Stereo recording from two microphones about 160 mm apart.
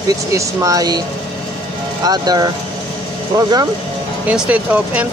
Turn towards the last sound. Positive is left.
turn(degrees=-10)  # may be behind; listen again after turning